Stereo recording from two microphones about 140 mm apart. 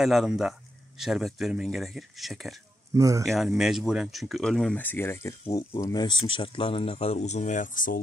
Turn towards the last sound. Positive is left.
turn(degrees=70)  # may be behind; listen again after turning